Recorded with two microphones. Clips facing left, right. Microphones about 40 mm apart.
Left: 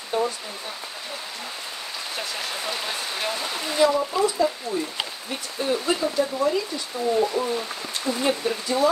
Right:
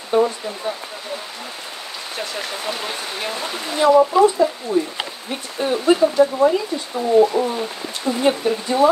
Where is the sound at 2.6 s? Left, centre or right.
Centre.